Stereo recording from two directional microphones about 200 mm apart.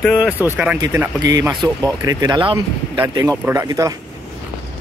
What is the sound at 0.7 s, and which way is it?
Speech, 15° right (ahead or behind).